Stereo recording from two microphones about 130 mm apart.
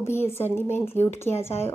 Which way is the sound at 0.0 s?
20° left (ahead or behind).